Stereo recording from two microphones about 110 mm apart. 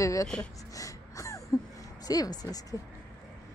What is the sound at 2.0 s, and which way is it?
Speech, 35° left (ahead or behind).